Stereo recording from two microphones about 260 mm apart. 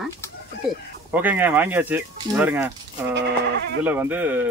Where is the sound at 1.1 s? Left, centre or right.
Centre.